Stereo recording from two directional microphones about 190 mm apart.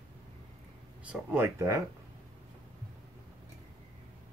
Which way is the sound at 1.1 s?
15° right (ahead or behind).